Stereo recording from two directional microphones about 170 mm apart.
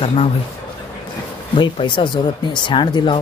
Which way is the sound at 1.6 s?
30° left (ahead or behind).